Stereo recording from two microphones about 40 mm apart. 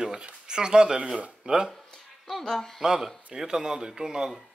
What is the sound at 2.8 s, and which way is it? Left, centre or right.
Speech, centre.